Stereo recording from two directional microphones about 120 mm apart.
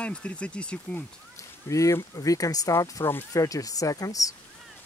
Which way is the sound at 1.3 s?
25° left (ahead or behind).